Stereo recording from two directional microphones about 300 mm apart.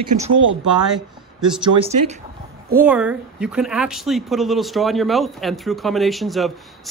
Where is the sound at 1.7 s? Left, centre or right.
Right.